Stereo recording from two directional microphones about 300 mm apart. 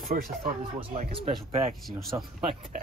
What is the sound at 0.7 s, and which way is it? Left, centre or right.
Speech, centre.